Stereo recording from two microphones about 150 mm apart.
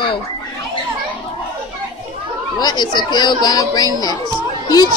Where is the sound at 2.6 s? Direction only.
30° left (ahead or behind).